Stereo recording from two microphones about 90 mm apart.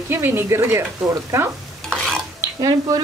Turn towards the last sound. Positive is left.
turn(degrees=-45)  # may be behind; listen again after turning